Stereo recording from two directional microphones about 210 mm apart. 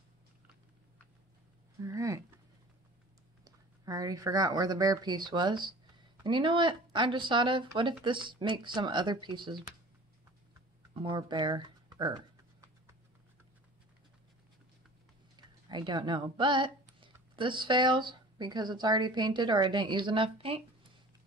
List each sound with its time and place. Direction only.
1.8 s a sound: 15° right (ahead or behind)
3.4 s speech: 15° right (ahead or behind)
11.0 s speech: 20° right (ahead or behind)
15.3 s speech: 20° right (ahead or behind)